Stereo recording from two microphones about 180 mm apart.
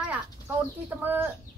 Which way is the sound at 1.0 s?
10° right (ahead or behind).